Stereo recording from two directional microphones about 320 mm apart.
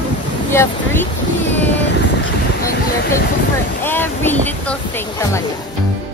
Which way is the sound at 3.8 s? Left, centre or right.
Centre.